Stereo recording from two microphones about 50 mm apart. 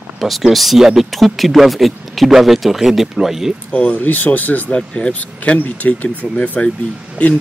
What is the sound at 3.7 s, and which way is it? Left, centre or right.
Speech, left.